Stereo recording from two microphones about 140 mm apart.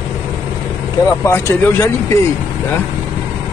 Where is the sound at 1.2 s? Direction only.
15° left (ahead or behind).